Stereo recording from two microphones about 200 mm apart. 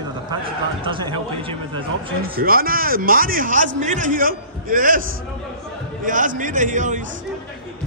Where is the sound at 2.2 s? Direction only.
45° right (ahead or behind).